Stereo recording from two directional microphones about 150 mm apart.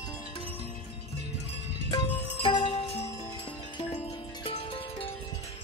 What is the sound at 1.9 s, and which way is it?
Music, 30° left (ahead or behind).